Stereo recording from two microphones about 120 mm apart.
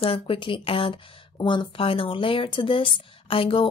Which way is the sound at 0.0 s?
50° left (ahead or behind).